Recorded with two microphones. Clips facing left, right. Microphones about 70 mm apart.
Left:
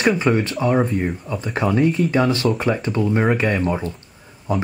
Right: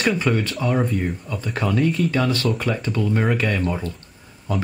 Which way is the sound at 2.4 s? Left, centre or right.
Centre.